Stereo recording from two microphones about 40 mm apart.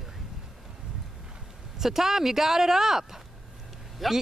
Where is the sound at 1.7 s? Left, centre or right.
Centre.